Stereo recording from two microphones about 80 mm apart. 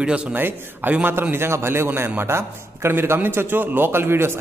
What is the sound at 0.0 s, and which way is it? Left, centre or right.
A man's voice, centre.